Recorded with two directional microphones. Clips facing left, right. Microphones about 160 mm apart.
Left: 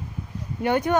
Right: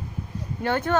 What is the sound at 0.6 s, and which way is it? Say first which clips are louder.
Speech: left 3 dB; 15° left (ahead or behind).